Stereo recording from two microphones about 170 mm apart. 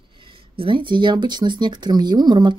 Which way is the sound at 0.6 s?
30° right (ahead or behind).